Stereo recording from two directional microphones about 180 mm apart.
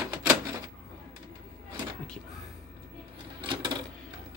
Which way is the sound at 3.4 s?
25° right (ahead or behind).